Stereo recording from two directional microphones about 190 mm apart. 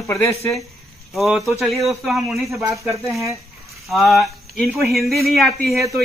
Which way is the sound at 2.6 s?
15° right (ahead or behind).